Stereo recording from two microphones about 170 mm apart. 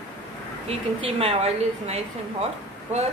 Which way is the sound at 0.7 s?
35° right (ahead or behind).